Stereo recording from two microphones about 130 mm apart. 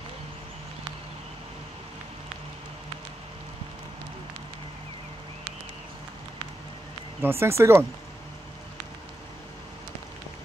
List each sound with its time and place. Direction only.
7.2 s speech: 20° right (ahead or behind)